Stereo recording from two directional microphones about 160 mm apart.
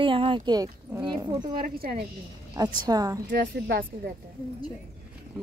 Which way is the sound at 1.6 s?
65° right (ahead or behind).